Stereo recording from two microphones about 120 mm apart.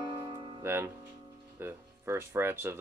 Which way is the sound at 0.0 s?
40° right (ahead or behind).